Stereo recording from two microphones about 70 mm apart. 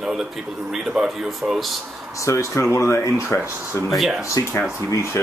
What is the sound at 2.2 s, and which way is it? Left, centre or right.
Speech, left.